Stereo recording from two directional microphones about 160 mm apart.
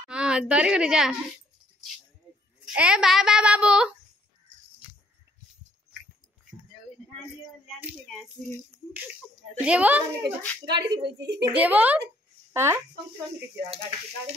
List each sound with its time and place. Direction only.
0.1 s a woman's voice: 5° right (ahead or behind)
2.6 s a child's voice: 5° right (ahead or behind)
7.6 s speech: 10° right (ahead or behind)
9.7 s a child's voice: 10° right (ahead or behind)
10.7 s speech: 90° right
11.5 s a child's voice: 10° right (ahead or behind)